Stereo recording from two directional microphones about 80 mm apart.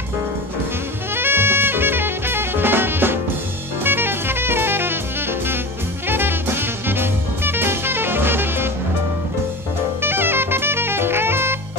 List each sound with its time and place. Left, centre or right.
1.1 s drum kit: right
6.0 s music: right
10.0 s jazz: right